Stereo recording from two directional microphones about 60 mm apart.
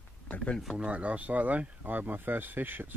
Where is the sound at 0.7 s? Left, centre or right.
Right.